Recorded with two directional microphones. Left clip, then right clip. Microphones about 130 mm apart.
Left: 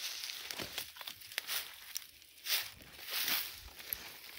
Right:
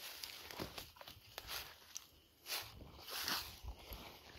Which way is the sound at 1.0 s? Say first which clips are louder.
Left 10 dB; centre (ahead or behind).